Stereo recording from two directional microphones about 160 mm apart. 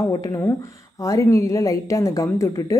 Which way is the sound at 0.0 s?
20° left (ahead or behind).